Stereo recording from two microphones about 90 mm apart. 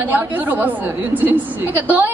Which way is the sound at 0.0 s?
20° right (ahead or behind).